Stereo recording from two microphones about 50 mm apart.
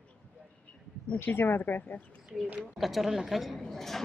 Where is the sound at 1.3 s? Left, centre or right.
Left.